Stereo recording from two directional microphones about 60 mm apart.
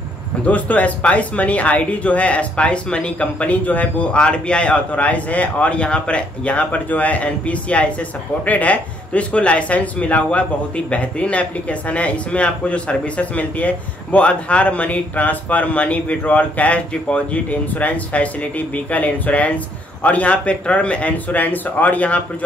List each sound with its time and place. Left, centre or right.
0.5 s speech: left